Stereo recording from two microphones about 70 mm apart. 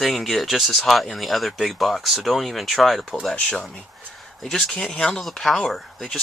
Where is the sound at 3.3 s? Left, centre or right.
Centre.